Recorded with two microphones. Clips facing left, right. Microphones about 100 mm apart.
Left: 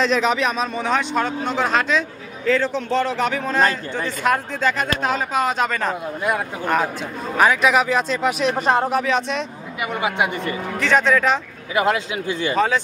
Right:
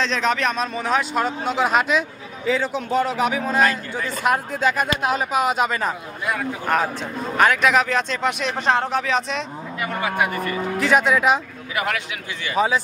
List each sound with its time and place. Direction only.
0.0 s speech: 5° left (ahead or behind)
9.9 s a man's voice: 20° left (ahead or behind)
10.8 s speech: 10° right (ahead or behind)
11.7 s a man's voice: 25° left (ahead or behind)
12.5 s speech: 5° right (ahead or behind)